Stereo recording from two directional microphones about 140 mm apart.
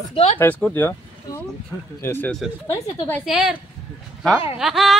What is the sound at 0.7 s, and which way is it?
Speech, 20° left (ahead or behind).